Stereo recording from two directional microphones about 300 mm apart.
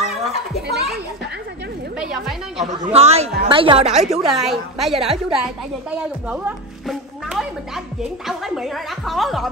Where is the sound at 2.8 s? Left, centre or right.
Right.